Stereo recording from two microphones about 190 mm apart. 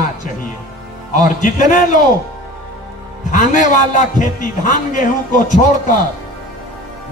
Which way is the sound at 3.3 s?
40° left (ahead or behind).